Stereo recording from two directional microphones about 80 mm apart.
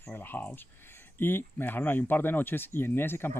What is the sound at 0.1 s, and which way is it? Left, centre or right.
Speech, left.